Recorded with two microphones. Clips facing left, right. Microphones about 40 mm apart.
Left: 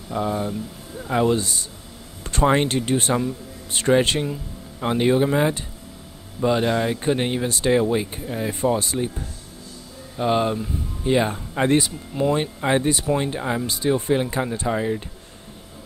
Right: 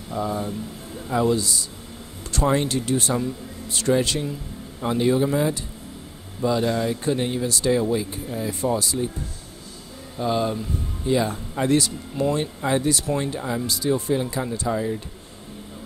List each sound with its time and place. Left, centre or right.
0.1 s speech: left
10.1 s speech: left